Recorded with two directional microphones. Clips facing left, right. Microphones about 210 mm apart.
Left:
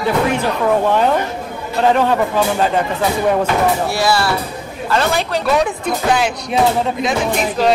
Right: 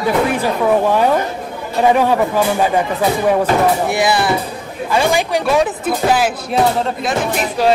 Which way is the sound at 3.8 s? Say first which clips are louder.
Right 1 dB; 20° right (ahead or behind).